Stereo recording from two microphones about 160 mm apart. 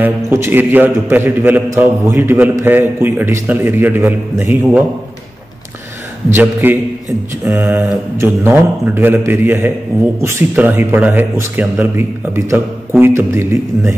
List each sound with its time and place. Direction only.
0.0 s a man's voice: 15° right (ahead or behind)
6.3 s a man's voice: 10° right (ahead or behind)